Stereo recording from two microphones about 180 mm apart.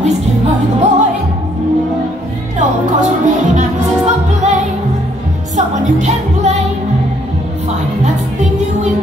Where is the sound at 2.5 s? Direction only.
45° right (ahead or behind).